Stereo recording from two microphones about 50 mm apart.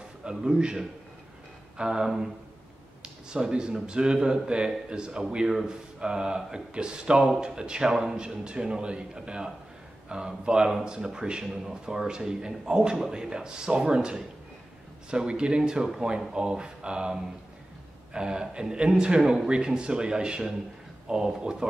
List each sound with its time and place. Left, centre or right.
0.2 s a man's voice: centre
3.3 s speech: centre
5.5 s speech: centre